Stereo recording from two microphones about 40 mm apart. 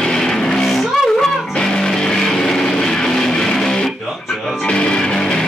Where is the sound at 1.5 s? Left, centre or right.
Left.